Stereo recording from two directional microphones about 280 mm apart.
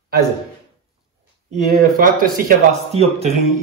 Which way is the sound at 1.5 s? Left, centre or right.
Right.